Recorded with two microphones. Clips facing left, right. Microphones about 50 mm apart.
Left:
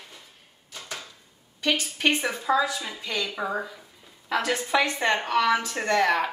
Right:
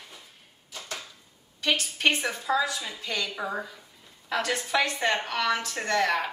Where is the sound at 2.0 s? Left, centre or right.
Centre.